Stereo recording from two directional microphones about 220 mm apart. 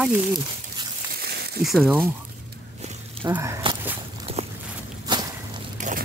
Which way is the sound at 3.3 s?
10° right (ahead or behind).